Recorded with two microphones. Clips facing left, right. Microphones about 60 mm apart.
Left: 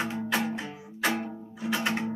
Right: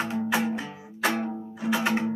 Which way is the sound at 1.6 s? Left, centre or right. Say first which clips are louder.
Right 4 dB; centre.